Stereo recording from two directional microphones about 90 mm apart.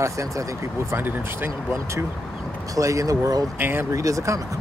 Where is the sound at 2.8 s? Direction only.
40° right (ahead or behind).